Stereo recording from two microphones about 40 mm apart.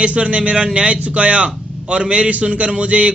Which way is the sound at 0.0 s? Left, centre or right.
Right.